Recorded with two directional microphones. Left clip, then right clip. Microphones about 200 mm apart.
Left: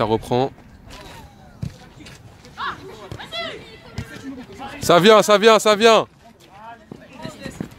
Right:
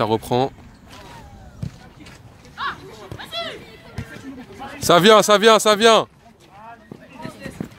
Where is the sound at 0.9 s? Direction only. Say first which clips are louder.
Left 1 dB; 50° left (ahead or behind).